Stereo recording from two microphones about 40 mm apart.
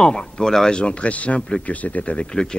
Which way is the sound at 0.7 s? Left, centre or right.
Left.